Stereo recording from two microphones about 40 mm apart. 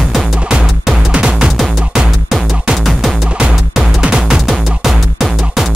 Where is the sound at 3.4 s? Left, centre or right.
Centre.